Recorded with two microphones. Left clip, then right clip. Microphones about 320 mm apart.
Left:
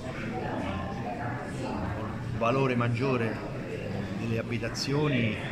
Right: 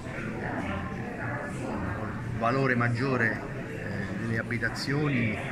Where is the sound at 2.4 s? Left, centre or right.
Centre.